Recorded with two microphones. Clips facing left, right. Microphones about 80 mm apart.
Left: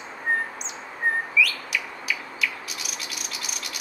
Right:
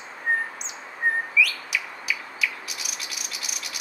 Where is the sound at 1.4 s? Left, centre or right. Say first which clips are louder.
Even; centre.